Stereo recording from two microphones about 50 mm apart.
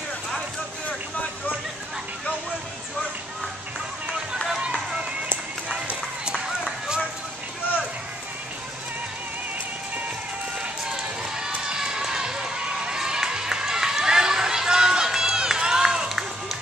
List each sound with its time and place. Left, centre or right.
5.7 s run: centre
11.3 s run: centre